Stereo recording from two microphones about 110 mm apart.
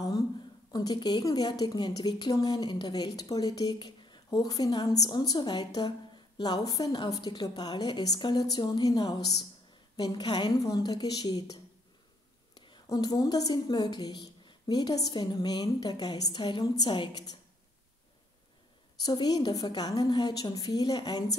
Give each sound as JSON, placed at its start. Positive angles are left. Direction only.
{"t": 0.7, "sound": "a woman's voice", "side_deg": 40}
{"t": 12.5, "sound": "a sound", "side_deg": 45}
{"t": 12.8, "sound": "a woman's voice", "side_deg": 35}
{"t": 18.9, "sound": "a woman's voice", "side_deg": 35}